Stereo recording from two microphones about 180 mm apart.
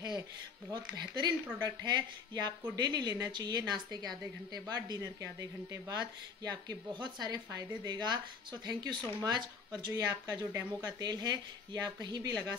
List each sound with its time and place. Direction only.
0.7 s speech: 25° right (ahead or behind)